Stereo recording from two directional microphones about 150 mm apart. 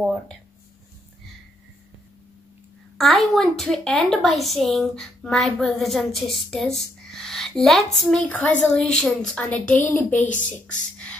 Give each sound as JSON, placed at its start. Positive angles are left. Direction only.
{"t": 3.0, "sound": "a woman's voice", "side_deg": 0}
{"t": 10.3, "sound": "speech", "side_deg": 55}